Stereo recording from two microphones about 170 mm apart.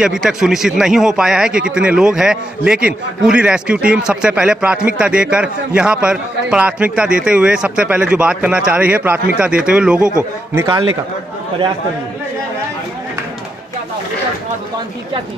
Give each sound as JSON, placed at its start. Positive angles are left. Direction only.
{"t": 0.0, "sound": "a man's voice", "side_deg": -5}
{"t": 10.5, "sound": "a man's voice", "side_deg": -15}